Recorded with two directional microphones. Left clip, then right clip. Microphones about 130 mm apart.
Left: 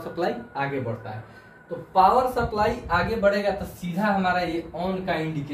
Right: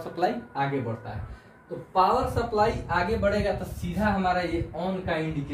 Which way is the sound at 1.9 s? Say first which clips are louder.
Left 4 dB; 20° right (ahead or behind).